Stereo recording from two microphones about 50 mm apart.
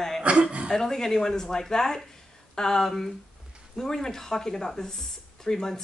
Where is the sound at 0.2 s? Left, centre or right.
Right.